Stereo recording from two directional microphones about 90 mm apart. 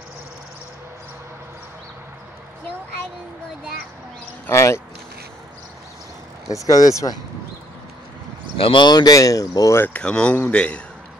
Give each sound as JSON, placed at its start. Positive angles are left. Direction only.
{"t": 4.5, "sound": "speech", "side_deg": 30}
{"t": 6.5, "sound": "speech", "side_deg": 40}
{"t": 8.5, "sound": "speech", "side_deg": 85}
{"t": 8.8, "sound": "speech", "side_deg": 50}
{"t": 9.9, "sound": "speech", "side_deg": 10}